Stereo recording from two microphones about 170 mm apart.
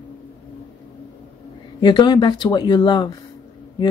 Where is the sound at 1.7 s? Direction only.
25° left (ahead or behind).